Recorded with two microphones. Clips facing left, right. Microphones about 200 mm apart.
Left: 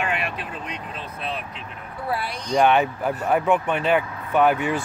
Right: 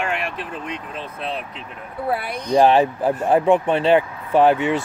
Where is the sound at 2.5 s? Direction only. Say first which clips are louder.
Right 4 dB; 30° right (ahead or behind).